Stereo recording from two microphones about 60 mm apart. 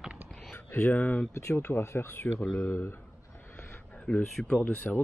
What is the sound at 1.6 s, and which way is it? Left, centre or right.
Speech, left.